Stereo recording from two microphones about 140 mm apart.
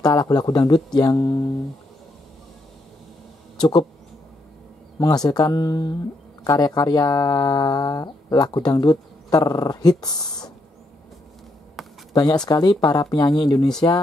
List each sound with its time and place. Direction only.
0.0 s speech: 30° left (ahead or behind)
4.9 s speech: 30° left (ahead or behind)
12.1 s speech: 30° left (ahead or behind)